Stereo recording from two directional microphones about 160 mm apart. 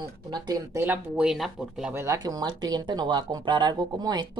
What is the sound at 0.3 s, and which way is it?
Speech, 25° right (ahead or behind).